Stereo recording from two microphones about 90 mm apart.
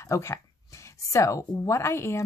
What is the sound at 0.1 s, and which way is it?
A woman's voice, 30° left (ahead or behind).